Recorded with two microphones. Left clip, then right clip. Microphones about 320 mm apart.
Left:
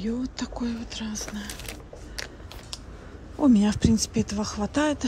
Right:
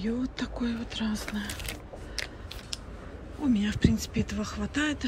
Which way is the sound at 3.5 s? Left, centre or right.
Centre.